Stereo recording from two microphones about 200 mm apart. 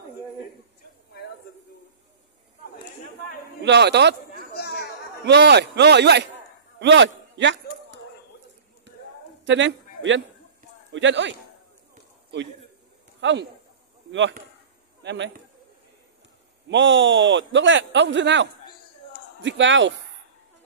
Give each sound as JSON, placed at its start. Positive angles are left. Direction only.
{"t": 3.6, "sound": "a man's voice", "side_deg": -60}
{"t": 4.4, "sound": "a sound", "side_deg": 50}
{"t": 5.2, "sound": "a man's voice", "side_deg": -60}
{"t": 8.9, "sound": "a sound", "side_deg": -60}
{"t": 9.5, "sound": "a man's voice", "side_deg": -70}
{"t": 13.2, "sound": "a man's voice", "side_deg": -65}
{"t": 15.0, "sound": "a man's voice", "side_deg": -65}
{"t": 16.6, "sound": "a man's voice", "side_deg": -65}